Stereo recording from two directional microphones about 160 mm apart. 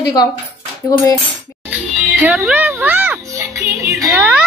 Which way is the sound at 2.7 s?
10° right (ahead or behind).